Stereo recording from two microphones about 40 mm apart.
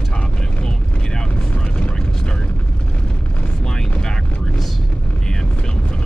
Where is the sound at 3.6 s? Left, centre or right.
Centre.